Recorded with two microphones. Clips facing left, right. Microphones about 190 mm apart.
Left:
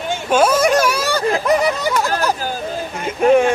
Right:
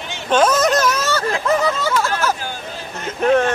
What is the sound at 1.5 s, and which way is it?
Speech, 15° left (ahead or behind).